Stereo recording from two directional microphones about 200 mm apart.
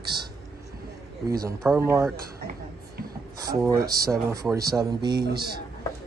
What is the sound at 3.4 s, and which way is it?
Speech, 15° right (ahead or behind).